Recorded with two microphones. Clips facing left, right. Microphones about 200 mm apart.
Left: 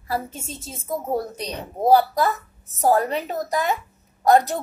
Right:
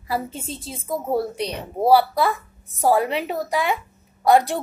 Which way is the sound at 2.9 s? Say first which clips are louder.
Right 1 dB; 10° right (ahead or behind).